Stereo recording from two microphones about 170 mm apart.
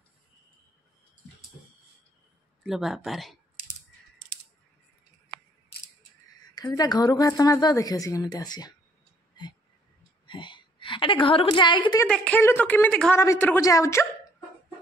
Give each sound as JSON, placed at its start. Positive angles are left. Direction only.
{"t": 2.6, "sound": "speech", "side_deg": 0}
{"t": 6.5, "sound": "a woman's voice", "side_deg": 20}
{"t": 9.3, "sound": "a sound", "side_deg": 25}
{"t": 10.2, "sound": "a woman's voice", "side_deg": 30}
{"t": 12.1, "sound": "a woman's voice", "side_deg": 10}